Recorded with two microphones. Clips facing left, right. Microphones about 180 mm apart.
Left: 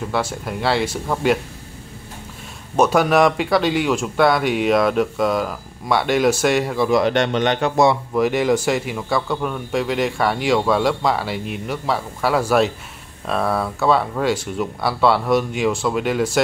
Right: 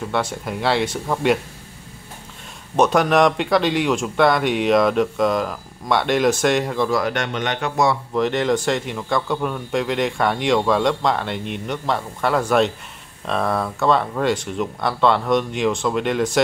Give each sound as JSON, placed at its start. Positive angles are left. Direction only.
{"t": 0.1, "sound": "speech", "side_deg": 0}
{"t": 2.7, "sound": "speech", "side_deg": 5}
{"t": 6.9, "sound": "speech", "side_deg": 25}
{"t": 8.1, "sound": "speech", "side_deg": 10}